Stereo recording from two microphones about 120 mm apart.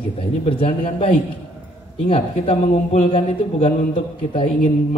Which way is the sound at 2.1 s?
65° left (ahead or behind).